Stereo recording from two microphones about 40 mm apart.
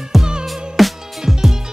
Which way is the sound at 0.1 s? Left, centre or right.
Centre.